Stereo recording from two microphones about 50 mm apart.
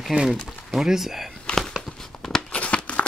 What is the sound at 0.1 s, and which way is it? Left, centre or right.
Speech, centre.